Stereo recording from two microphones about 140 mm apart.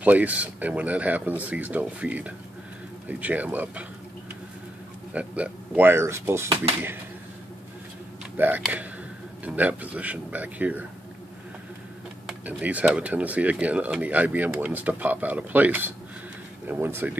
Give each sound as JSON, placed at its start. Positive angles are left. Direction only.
{"t": 0.0, "sound": "speech", "side_deg": -10}
{"t": 5.1, "sound": "speech", "side_deg": -10}
{"t": 8.4, "sound": "speech", "side_deg": -15}
{"t": 12.3, "sound": "speech", "side_deg": -10}